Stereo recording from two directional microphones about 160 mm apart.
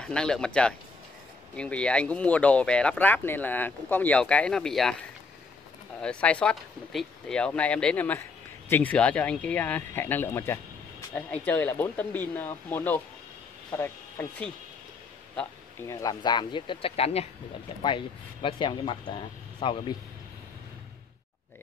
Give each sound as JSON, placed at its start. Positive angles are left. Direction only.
{"t": 0.0, "sound": "speech", "side_deg": 5}
{"t": 5.9, "sound": "speech", "side_deg": 5}
{"t": 15.9, "sound": "speech", "side_deg": 25}